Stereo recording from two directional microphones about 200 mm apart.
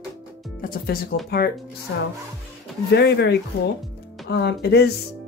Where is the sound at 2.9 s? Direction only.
55° left (ahead or behind).